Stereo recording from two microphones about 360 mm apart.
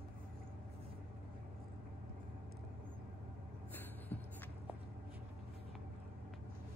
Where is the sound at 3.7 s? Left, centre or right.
Centre.